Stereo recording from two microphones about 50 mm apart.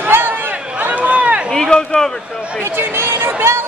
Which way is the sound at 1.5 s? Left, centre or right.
Centre.